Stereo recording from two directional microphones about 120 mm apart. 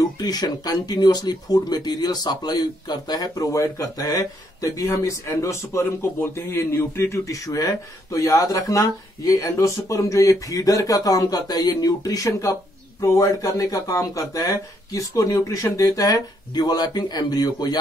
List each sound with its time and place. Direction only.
0.0 s speech: 35° left (ahead or behind)